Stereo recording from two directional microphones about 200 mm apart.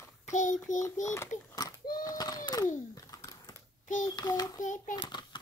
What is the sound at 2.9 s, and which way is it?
Typing, 15° left (ahead or behind).